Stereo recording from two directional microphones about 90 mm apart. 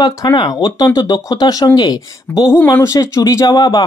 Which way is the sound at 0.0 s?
45° left (ahead or behind).